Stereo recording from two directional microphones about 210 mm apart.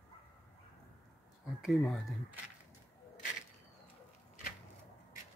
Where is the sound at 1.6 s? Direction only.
Centre (ahead or behind).